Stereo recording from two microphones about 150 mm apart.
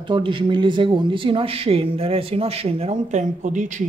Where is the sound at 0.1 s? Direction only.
35° right (ahead or behind).